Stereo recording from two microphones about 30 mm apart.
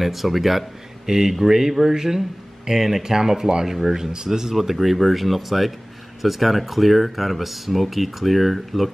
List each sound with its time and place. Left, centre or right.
0.0 s speech: centre
1.0 s speech: centre
4.6 s speech: centre